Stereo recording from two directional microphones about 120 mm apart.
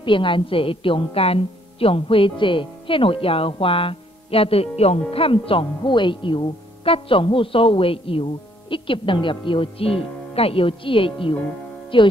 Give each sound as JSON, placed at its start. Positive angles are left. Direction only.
{"t": 0.0, "sound": "speech", "side_deg": 45}